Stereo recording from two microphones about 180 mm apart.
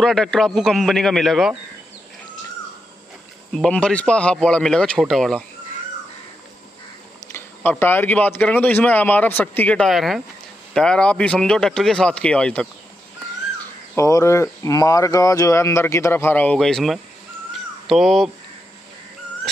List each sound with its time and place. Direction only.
0.0 s speech: centre (ahead or behind)
3.5 s speech: 5° left (ahead or behind)
7.3 s speech: 10° left (ahead or behind)
13.9 s speech: 15° left (ahead or behind); by 17.0 s centre (ahead or behind)
17.5 s cat: centre (ahead or behind)